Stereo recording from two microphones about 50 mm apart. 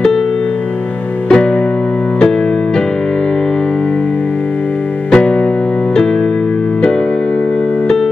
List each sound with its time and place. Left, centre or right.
1.3 s music: centre
5.1 s music: centre